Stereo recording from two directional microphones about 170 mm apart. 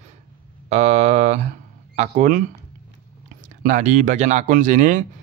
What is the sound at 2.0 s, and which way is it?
Speech, 50° right (ahead or behind).